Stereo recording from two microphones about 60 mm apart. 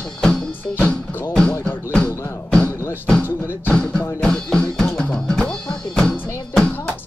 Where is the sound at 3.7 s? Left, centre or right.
Centre.